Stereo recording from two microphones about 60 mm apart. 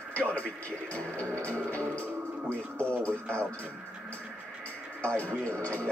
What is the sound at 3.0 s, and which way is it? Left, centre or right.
Music, centre.